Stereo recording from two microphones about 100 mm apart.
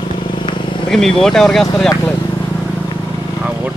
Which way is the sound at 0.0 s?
50° left (ahead or behind).